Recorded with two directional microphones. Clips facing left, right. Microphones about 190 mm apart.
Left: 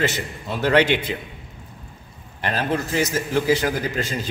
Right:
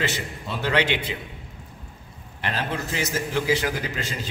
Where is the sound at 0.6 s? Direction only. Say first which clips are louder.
Left 6 dB; 45° left (ahead or behind).